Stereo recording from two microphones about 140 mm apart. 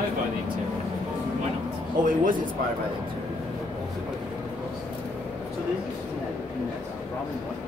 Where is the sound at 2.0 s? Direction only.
75° right (ahead or behind).